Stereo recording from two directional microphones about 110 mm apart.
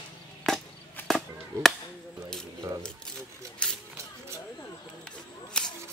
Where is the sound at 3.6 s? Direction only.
10° left (ahead or behind).